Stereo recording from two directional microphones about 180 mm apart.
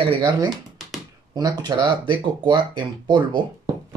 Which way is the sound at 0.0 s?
25° right (ahead or behind).